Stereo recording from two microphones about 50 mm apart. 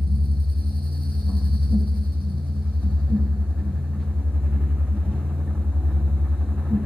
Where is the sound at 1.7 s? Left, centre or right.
Right.